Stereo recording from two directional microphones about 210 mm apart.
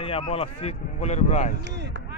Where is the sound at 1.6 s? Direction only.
55° right (ahead or behind).